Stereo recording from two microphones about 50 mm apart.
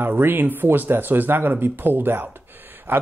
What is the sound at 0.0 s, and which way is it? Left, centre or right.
Speech, right.